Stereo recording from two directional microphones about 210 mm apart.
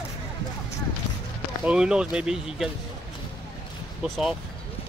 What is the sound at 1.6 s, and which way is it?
Speech, 5° right (ahead or behind).